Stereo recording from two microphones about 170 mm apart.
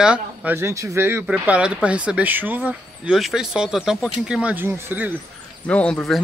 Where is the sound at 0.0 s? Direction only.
5° right (ahead or behind).